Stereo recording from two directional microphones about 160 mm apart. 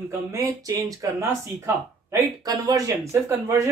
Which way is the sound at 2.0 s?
20° right (ahead or behind).